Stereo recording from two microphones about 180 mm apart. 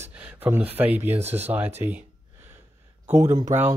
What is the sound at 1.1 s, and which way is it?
Speech, 35° right (ahead or behind).